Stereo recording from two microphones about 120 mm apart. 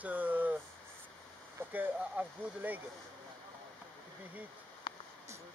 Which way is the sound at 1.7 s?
15° right (ahead or behind).